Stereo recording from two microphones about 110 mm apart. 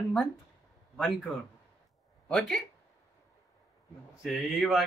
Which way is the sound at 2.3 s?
5° left (ahead or behind).